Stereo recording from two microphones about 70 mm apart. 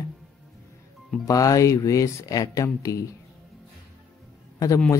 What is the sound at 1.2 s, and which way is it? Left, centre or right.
Speech, left.